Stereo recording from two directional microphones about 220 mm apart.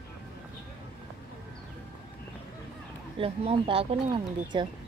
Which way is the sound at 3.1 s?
25° right (ahead or behind).